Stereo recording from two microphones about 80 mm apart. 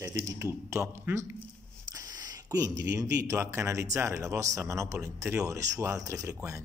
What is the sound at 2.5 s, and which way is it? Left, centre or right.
Speech, right.